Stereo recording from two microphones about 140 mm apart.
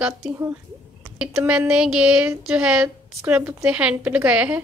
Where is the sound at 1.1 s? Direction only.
5° right (ahead or behind).